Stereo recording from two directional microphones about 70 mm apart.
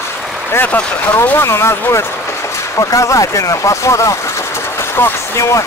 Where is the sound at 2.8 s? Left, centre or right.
Left.